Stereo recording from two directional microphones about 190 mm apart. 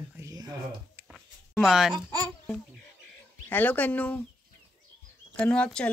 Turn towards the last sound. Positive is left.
turn(degrees=5)  # may be behind; listen again after turning